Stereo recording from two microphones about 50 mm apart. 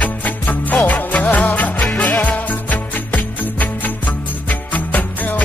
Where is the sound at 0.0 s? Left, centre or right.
Left.